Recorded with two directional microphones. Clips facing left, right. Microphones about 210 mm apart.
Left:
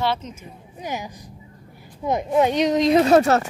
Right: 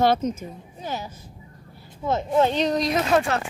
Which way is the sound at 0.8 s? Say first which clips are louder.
Left 2 dB; 15° left (ahead or behind).